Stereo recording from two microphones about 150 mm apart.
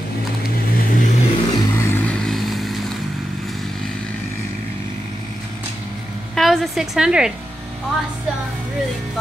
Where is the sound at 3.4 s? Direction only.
Centre (ahead or behind).